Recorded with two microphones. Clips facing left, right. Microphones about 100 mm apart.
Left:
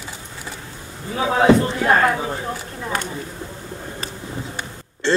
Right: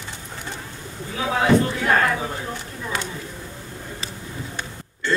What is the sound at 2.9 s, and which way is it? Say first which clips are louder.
Speech: left 3 dB; 45° left (ahead or behind).